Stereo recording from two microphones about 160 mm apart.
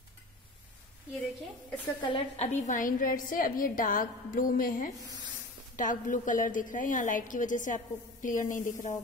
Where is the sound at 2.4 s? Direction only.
45° left (ahead or behind).